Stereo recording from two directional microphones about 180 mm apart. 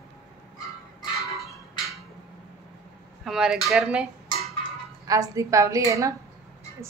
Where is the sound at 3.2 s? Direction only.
5° right (ahead or behind).